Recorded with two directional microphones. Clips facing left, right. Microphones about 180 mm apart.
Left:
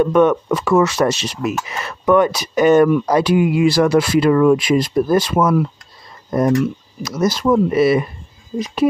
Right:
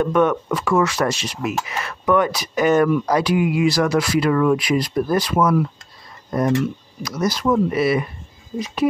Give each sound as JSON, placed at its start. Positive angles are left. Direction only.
{"t": 0.0, "sound": "speech", "side_deg": 25}
{"t": 7.0, "sound": "speech", "side_deg": 25}